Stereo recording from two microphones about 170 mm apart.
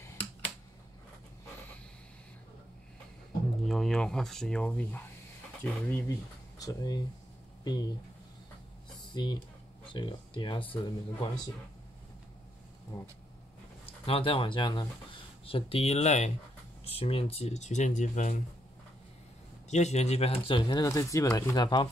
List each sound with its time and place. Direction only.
3.6 s speech: centre (ahead or behind)
6.6 s speech: 20° left (ahead or behind)
9.1 s speech: 25° left (ahead or behind)
13.8 s speech: 35° left (ahead or behind)
19.7 s speech: 40° left (ahead or behind); by 21.8 s 25° left (ahead or behind)